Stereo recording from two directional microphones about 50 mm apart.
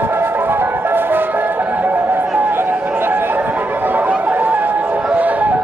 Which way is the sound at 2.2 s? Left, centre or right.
Right.